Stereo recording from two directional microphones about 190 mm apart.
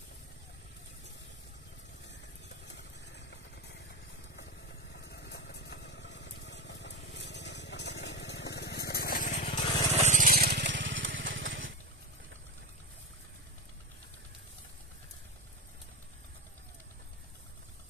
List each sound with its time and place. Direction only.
4.9 s vehicle: 60° left (ahead or behind)
9.4 s vehicle: 30° left (ahead or behind)
9.9 s a sound: 40° right (ahead or behind); by 11.7 s 85° right